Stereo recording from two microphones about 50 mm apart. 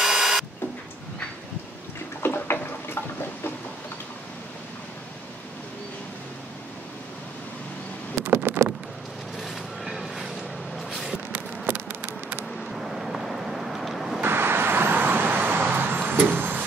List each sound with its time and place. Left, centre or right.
0.0 s wood: centre
2.2 s bathtub: left
2.5 s a sound: left
8.2 s vehicle: right
10.0 s vehicle: centre
10.8 s a sound: centre
11.7 s a sound: right
12.5 s vehicle: centre
14.2 s vehicle: right